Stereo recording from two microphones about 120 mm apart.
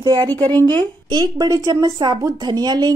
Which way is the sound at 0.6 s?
20° left (ahead or behind).